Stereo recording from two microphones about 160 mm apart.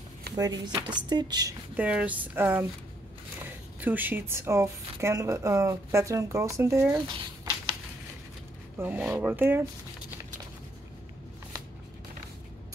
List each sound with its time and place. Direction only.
0.4 s speech: 25° right (ahead or behind)
1.8 s a woman's voice: 10° right (ahead or behind)
3.8 s a woman's voice: 10° right (ahead or behind)
7.1 s a sound: 30° right (ahead or behind)
8.7 s a woman's voice: 10° right (ahead or behind)